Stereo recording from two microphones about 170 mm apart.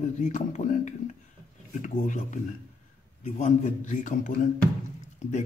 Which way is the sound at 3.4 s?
45° left (ahead or behind).